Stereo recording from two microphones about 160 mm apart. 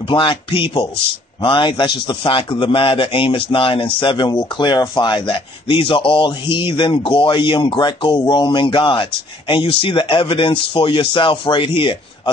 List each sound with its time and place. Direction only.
0.1 s a man's voice: 30° left (ahead or behind)